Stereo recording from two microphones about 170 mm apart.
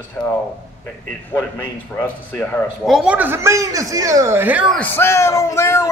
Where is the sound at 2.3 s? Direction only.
5° left (ahead or behind).